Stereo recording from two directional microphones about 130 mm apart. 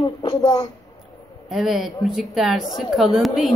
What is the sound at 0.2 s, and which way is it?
Speech, 35° left (ahead or behind).